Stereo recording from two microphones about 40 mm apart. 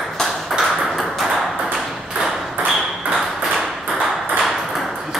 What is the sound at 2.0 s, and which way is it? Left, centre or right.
Ping, centre.